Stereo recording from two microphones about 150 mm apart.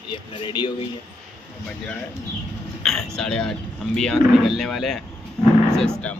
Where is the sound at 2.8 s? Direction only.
5° left (ahead or behind).